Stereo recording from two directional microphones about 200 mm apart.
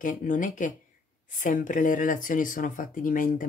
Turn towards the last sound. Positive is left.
turn(degrees=40)  # may be behind; listen again after turning